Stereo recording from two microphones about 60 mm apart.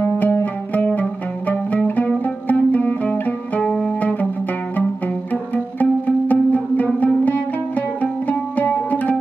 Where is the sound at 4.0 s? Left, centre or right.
Left.